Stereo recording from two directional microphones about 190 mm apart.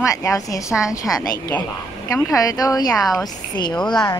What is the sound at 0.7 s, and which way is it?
Speech, 5° right (ahead or behind).